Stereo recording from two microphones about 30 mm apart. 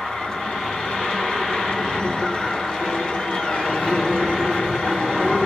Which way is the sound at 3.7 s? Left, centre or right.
Left.